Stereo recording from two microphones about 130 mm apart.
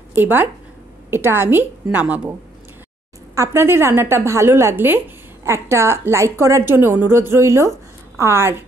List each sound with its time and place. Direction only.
0.1 s a woman's voice: 15° right (ahead or behind)
3.3 s a woman's voice: 20° right (ahead or behind)